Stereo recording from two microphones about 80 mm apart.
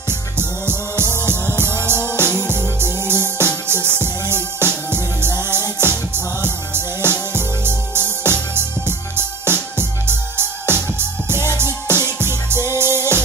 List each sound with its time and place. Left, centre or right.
0.4 s music: right